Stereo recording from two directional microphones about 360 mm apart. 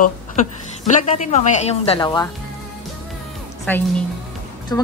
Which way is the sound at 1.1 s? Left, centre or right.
Centre.